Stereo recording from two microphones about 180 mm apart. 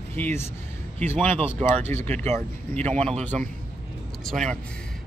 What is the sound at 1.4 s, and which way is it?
Speech, 35° right (ahead or behind).